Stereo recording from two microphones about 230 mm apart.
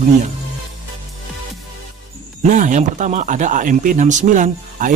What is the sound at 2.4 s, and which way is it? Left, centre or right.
Speech, right.